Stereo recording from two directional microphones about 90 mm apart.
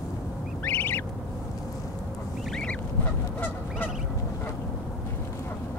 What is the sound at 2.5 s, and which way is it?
Fowl, 10° left (ahead or behind).